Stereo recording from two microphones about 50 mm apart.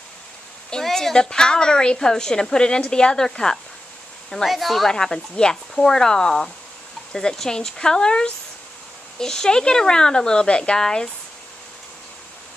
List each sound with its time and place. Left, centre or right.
0.7 s a woman's voice: centre
4.5 s speech: centre
4.9 s a woman's voice: centre